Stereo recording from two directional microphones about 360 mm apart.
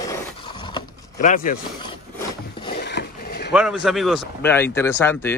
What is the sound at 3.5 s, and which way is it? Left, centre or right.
Speech, centre.